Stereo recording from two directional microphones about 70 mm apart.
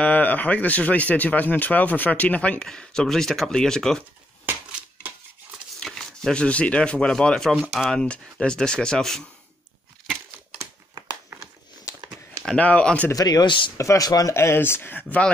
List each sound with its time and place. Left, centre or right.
0.0 s a man's voice: left; by 4.0 s centre
5.8 s speech: centre
12.5 s a man's voice: centre
13.1 s speech: left
13.7 s speech: left
14.3 s speech: left